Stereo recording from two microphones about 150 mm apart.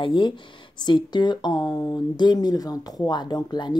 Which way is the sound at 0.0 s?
30° left (ahead or behind).